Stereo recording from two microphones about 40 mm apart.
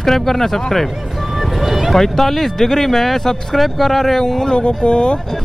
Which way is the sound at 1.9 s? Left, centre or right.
Centre.